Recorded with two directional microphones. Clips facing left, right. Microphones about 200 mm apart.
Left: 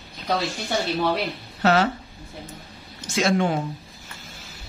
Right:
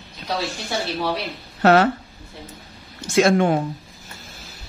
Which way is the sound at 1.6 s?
55° right (ahead or behind).